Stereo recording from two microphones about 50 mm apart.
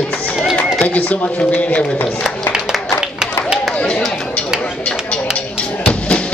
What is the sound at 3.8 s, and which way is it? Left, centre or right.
Speech, left.